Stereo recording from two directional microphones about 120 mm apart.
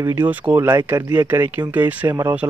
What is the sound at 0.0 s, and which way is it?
Speech, 15° right (ahead or behind).